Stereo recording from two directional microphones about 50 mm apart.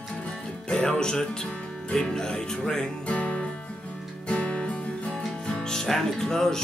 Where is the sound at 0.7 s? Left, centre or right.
Centre.